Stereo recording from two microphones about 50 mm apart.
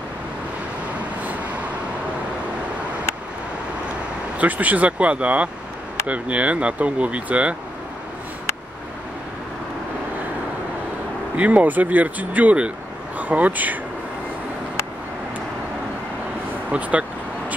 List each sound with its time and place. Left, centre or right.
4.4 s speech: right
11.3 s speech: right
16.7 s speech: right